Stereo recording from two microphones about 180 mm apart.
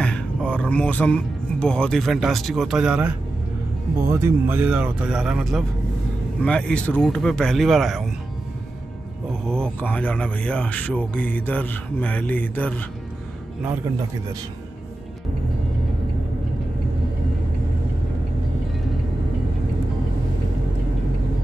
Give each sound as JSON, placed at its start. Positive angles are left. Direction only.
{"t": 0.0, "sound": "speech", "side_deg": 5}
{"t": 9.5, "sound": "speech", "side_deg": 5}